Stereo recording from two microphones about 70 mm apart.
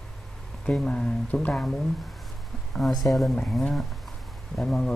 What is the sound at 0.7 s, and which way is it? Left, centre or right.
Speech, centre.